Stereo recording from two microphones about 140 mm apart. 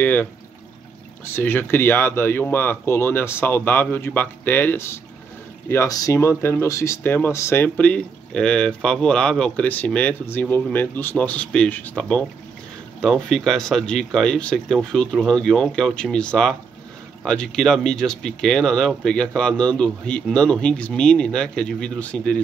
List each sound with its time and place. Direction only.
0.0 s speech: 10° left (ahead or behind)